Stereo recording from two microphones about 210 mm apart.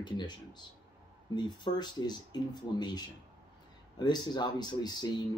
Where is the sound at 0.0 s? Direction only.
20° left (ahead or behind).